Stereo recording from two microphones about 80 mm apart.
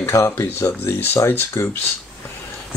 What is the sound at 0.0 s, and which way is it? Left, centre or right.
Speech, left.